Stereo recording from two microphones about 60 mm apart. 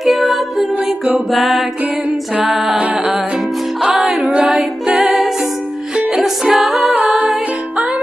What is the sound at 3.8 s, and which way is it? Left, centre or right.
Music, centre.